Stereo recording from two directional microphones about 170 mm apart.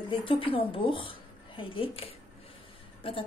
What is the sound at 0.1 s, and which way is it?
A woman's voice, 30° left (ahead or behind).